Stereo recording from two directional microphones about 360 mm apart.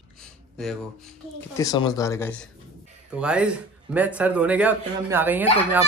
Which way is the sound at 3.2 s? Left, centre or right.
Centre.